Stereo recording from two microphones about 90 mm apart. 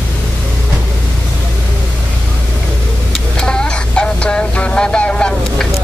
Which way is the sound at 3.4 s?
10° left (ahead or behind).